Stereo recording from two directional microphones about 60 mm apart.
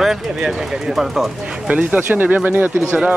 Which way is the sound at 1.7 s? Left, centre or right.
Right.